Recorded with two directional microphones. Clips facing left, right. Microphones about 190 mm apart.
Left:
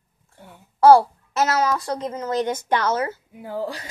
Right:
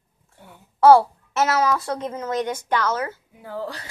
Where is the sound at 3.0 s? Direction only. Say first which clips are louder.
Left 3 dB; 10° left (ahead or behind).